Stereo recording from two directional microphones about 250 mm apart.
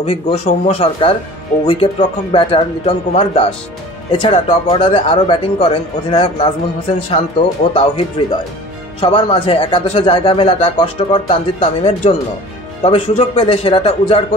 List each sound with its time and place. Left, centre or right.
0.0 s speech: left